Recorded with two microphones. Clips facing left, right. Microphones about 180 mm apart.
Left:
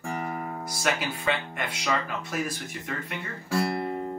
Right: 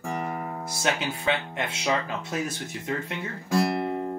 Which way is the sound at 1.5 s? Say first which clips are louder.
Right 2 dB; 25° right (ahead or behind).